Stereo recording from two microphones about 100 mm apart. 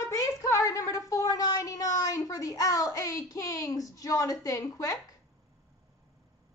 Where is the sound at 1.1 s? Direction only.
35° left (ahead or behind).